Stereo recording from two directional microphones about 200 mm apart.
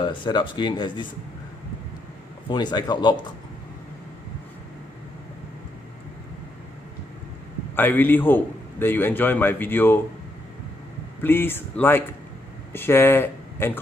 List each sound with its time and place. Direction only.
0.0 s speech: 25° left (ahead or behind)
2.5 s speech: 20° left (ahead or behind)
7.7 s a man's voice: 10° left (ahead or behind)
11.2 s a man's voice: 10° left (ahead or behind)